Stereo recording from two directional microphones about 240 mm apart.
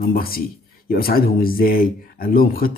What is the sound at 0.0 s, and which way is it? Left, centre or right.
Speech, left.